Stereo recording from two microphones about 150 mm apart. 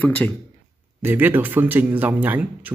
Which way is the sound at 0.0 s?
10° left (ahead or behind).